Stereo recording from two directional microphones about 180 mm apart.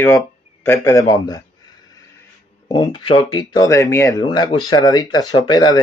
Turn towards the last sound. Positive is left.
turn(degrees=20)  # may be behind; listen again after turning